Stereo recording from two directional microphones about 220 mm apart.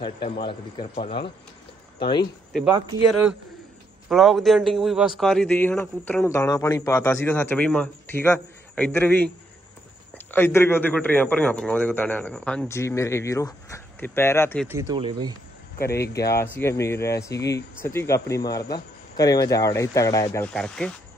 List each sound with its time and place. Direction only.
0.0 s speech: 20° left (ahead or behind)
3.1 s a man's voice: 5° right (ahead or behind)
10.3 s a man's voice: 10° left (ahead or behind)
14.7 s speech: 15° right (ahead or behind)
16.2 s a man's voice: 15° left (ahead or behind)
20.4 s speech: 5° left (ahead or behind)